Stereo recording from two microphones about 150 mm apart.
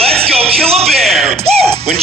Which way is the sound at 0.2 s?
40° right (ahead or behind).